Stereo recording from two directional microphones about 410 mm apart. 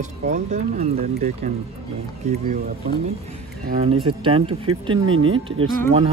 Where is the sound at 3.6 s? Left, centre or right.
Centre.